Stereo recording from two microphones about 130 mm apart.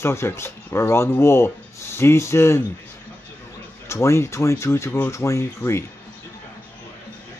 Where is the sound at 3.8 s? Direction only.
20° left (ahead or behind).